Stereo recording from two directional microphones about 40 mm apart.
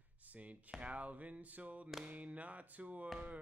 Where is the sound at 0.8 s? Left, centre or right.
Right.